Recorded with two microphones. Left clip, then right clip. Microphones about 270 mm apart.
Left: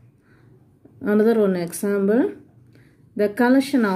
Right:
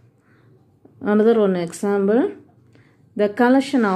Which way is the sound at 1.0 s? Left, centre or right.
Centre.